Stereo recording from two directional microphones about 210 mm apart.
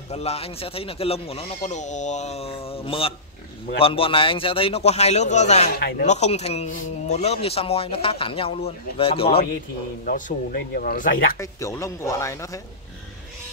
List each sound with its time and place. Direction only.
0.1 s speech: 30° left (ahead or behind)
5.8 s speech: 50° left (ahead or behind)
6.0 s speech: 30° left (ahead or behind)
10.0 s speech: 40° left (ahead or behind)
11.3 s speech: 15° left (ahead or behind)